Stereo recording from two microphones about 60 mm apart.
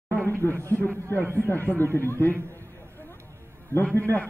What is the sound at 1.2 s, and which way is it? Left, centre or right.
Speech, right.